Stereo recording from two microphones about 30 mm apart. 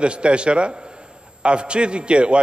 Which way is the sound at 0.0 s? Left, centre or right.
Right.